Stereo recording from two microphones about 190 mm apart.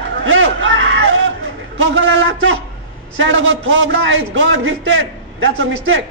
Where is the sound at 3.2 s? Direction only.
90° right.